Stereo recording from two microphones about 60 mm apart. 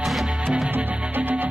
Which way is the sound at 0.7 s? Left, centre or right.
Right.